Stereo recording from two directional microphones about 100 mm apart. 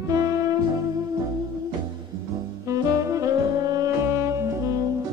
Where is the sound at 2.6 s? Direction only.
30° right (ahead or behind).